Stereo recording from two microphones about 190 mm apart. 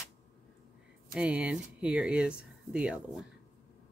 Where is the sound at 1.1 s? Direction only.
5° right (ahead or behind).